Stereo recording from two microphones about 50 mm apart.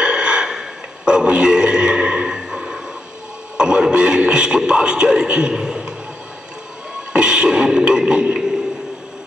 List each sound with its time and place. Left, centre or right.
0.0 s a sound: centre
3.5 s a man's voice: centre
7.1 s music: centre